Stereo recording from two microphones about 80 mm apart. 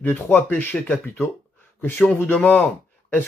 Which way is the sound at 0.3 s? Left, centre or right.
Left.